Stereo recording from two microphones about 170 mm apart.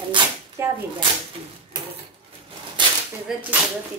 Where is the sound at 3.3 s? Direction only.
5° right (ahead or behind).